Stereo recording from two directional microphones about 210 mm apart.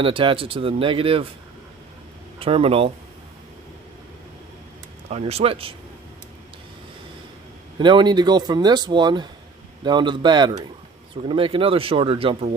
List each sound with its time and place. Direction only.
0.0 s a man's voice: 25° right (ahead or behind)
2.3 s speech: 25° right (ahead or behind)
5.1 s a man's voice: 30° right (ahead or behind)
7.8 s a man's voice: 20° right (ahead or behind)